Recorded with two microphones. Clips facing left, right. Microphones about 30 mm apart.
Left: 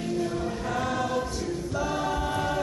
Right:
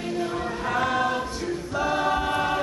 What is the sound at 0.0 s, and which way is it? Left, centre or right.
Choir, right.